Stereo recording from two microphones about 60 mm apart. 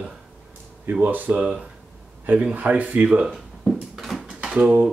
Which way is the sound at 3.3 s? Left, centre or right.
Centre.